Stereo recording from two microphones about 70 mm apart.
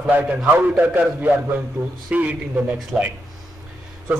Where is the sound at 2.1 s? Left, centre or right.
Right.